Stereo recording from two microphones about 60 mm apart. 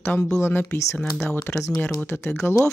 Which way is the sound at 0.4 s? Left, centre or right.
Left.